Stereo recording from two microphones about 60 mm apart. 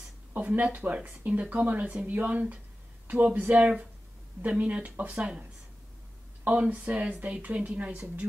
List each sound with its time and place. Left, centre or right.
0.3 s speech: right
6.4 s speech: right